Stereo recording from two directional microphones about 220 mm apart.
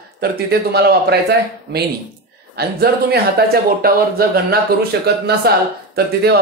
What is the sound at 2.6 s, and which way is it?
Speech, 45° right (ahead or behind).